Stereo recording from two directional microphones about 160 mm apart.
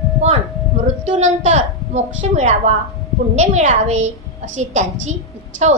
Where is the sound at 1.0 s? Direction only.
45° right (ahead or behind).